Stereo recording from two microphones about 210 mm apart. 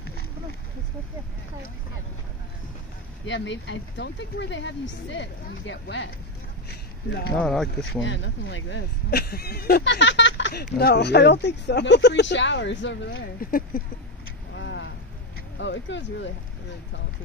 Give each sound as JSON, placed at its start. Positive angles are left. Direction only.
{"t": 3.3, "sound": "speech", "side_deg": 60}
{"t": 7.3, "sound": "speech", "side_deg": 0}
{"t": 8.0, "sound": "speech", "side_deg": 60}
{"t": 14.5, "sound": "vehicle", "side_deg": 60}
{"t": 15.5, "sound": "speech", "side_deg": 60}